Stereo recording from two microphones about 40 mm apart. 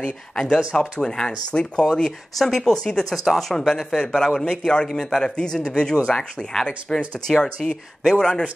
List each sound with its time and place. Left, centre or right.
0.0 s speech: left
3.3 s a man's voice: centre
5.2 s speech: centre